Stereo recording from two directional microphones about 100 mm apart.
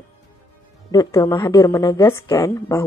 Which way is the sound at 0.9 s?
35° left (ahead or behind).